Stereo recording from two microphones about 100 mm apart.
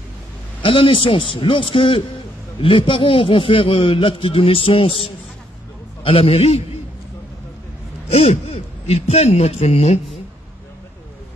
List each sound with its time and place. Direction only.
0.6 s a man's voice: 60° left (ahead or behind); by 6.6 s 80° left
8.1 s a man's voice: 90° left